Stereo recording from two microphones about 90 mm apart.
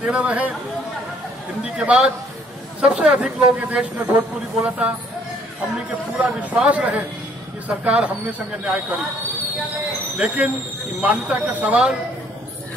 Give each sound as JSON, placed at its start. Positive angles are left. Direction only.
{"t": 0.0, "sound": "speech", "side_deg": -15}
{"t": 1.9, "sound": "speech", "side_deg": -10}
{"t": 6.2, "sound": "speech", "side_deg": -15}
{"t": 10.1, "sound": "speech", "side_deg": -15}